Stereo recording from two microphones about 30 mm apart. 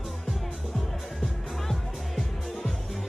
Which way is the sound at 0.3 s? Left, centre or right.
Centre.